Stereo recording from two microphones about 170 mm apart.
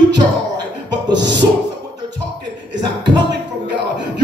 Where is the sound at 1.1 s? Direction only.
90° right.